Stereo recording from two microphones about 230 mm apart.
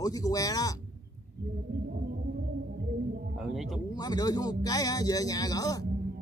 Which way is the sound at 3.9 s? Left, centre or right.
Centre.